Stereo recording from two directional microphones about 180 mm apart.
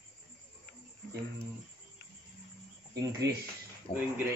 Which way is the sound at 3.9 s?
30° left (ahead or behind).